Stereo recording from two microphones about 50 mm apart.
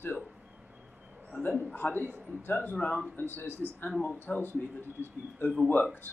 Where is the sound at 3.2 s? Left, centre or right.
Left.